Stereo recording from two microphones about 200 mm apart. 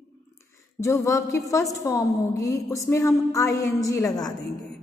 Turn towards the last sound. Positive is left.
turn(degrees=20)  # may be behind; listen again after turning